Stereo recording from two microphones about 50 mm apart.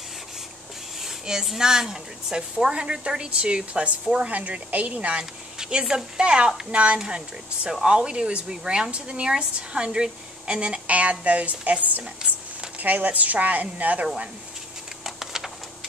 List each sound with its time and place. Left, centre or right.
1.0 s a woman's voice: centre; by 5.2 s right
5.6 s a woman's voice: centre
10.9 s a woman's voice: right
14.0 s a woman's voice: centre
15.0 s a sound: centre